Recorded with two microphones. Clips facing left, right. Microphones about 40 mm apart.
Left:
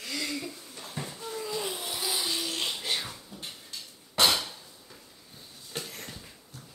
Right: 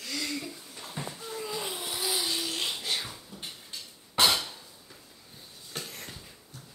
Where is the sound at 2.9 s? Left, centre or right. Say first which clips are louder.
Left 1 dB; centre.